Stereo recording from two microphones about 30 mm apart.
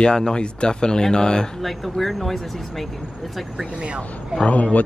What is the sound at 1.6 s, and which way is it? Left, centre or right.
Speech, centre.